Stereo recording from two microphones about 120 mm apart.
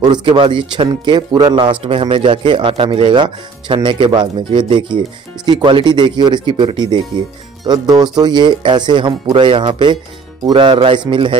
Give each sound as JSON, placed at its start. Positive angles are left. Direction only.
{"t": 0.1, "sound": "speech", "side_deg": -40}
{"t": 1.8, "sound": "speech", "side_deg": -50}